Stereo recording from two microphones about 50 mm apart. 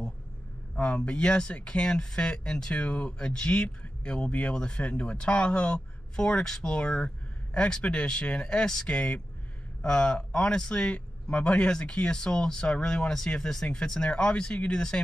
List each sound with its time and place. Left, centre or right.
0.7 s speech: left